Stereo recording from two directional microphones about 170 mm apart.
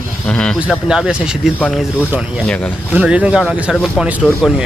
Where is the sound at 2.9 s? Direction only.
5° right (ahead or behind).